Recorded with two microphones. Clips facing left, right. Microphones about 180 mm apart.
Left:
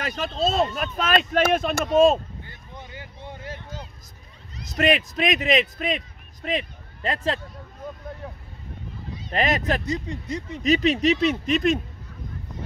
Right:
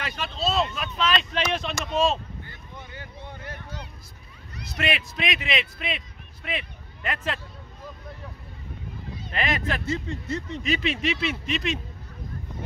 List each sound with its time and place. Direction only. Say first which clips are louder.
0.0 s speech: left 4 dB; 45° left (ahead or behind)
2.7 s a sound: left 1 dB; 15° left (ahead or behind)
4.6 s speech: left 7 dB; 45° left (ahead or behind)
9.3 s speech: left 5 dB; 40° left (ahead or behind)
9.8 s speech: left 1 dB; 15° left (ahead or behind)
10.6 s speech: left 9 dB; 40° left (ahead or behind)